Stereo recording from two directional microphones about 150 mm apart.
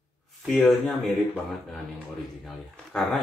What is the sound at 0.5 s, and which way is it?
Speech, centre (ahead or behind).